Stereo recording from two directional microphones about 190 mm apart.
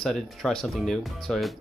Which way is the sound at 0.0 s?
Centre (ahead or behind).